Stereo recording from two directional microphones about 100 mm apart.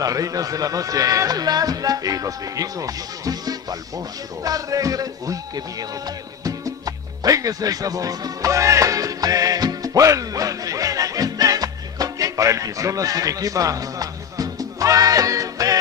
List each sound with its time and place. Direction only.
0.0 s speech: 35° right (ahead or behind)
7.2 s music: 35° right (ahead or behind)